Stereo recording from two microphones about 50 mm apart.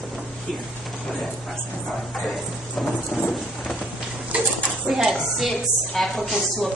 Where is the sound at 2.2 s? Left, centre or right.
Centre.